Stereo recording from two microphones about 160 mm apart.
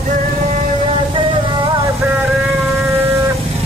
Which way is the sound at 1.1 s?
30° right (ahead or behind).